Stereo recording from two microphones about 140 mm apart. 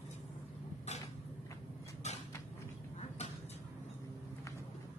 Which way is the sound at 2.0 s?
55° left (ahead or behind).